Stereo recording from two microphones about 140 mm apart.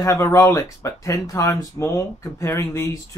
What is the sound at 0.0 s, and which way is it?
Speech, 20° left (ahead or behind).